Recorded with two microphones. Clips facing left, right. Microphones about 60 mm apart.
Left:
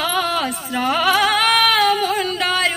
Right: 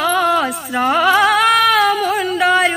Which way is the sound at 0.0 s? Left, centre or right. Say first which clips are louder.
Right 5 dB; centre.